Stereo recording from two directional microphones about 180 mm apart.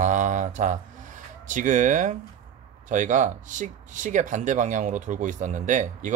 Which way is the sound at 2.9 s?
45° right (ahead or behind).